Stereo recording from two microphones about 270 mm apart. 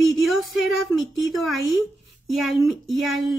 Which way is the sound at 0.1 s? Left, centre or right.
Centre.